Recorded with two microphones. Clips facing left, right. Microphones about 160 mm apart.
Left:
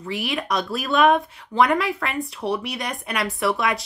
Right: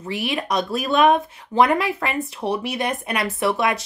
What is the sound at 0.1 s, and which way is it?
Speech, centre (ahead or behind).